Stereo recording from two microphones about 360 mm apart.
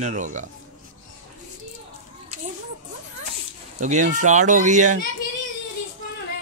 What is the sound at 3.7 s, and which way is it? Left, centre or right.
Speech, centre.